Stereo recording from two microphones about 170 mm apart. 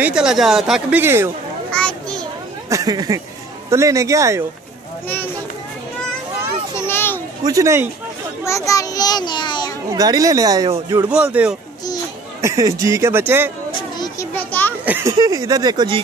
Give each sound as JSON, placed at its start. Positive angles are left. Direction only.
{"t": 0.0, "sound": "speech", "side_deg": -5}
{"t": 1.7, "sound": "children playing", "side_deg": 5}
{"t": 2.7, "sound": "speech", "side_deg": -20}
{"t": 5.0, "sound": "a sound", "side_deg": 10}
{"t": 6.9, "sound": "a sound", "side_deg": 10}
{"t": 7.4, "sound": "speech", "side_deg": -20}
{"t": 8.5, "sound": "a child's voice", "side_deg": 20}
{"t": 9.8, "sound": "speech", "side_deg": -20}
{"t": 11.1, "sound": "speech", "side_deg": -10}
{"t": 12.4, "sound": "speech", "side_deg": -20}
{"t": 13.9, "sound": "a sound", "side_deg": 25}
{"t": 14.3, "sound": "children playing", "side_deg": 10}
{"t": 14.9, "sound": "speech", "side_deg": -15}